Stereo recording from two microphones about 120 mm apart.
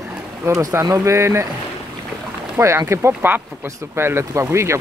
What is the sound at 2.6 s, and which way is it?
Speech, 25° right (ahead or behind).